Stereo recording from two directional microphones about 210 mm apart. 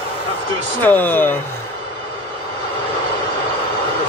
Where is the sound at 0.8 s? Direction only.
10° left (ahead or behind).